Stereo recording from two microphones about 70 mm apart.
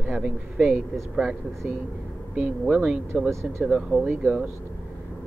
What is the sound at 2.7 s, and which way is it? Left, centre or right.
Speech, centre.